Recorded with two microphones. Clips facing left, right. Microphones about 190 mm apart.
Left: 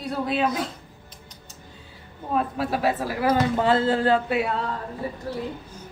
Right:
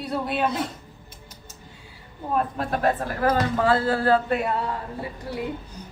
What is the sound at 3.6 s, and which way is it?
Speech, 25° left (ahead or behind).